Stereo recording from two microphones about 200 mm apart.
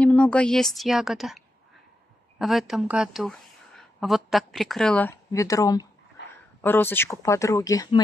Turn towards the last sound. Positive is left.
turn(degrees=20)  # may be behind; listen again after turning